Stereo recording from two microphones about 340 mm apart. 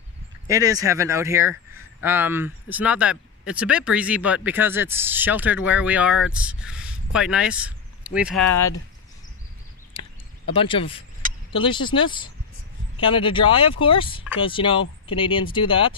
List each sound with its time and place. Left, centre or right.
0.5 s speech: centre
9.9 s a sound: centre
11.5 s speech: centre